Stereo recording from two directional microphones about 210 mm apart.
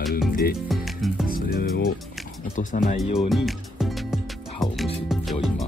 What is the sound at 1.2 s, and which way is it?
Music, 45° left (ahead or behind).